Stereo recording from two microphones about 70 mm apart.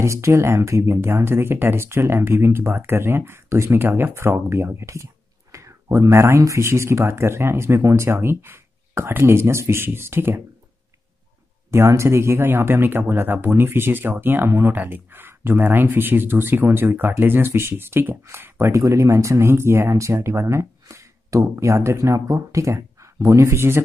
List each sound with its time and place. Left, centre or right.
0.0 s speech: right
11.7 s speech: right
18.7 s speech: right